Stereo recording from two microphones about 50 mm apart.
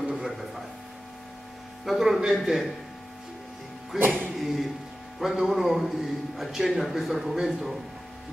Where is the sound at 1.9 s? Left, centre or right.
Centre.